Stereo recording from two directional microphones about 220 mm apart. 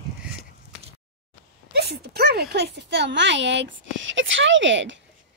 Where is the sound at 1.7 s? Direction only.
45° right (ahead or behind).